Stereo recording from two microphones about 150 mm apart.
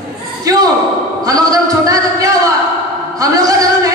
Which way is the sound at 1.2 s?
25° right (ahead or behind).